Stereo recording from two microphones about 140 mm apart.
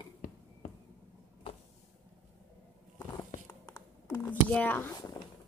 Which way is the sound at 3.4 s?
25° left (ahead or behind).